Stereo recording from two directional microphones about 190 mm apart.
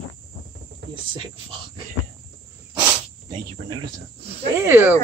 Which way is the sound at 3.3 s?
25° right (ahead or behind).